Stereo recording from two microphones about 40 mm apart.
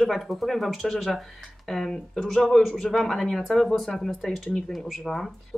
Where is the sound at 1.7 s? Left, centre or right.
Centre.